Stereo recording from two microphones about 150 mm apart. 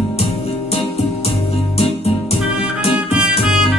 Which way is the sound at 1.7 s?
45° left (ahead or behind).